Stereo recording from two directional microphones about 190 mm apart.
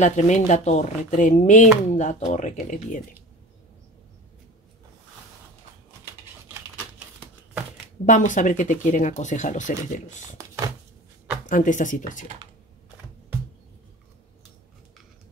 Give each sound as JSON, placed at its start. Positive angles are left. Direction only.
{"t": 0.0, "sound": "speech", "side_deg": 40}
{"t": 8.0, "sound": "speech", "side_deg": 40}
{"t": 10.3, "sound": "speech", "side_deg": -15}
{"t": 11.4, "sound": "speech", "side_deg": 45}